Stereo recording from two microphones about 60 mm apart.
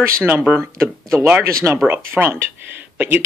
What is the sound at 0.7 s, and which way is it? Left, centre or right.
Speech, right.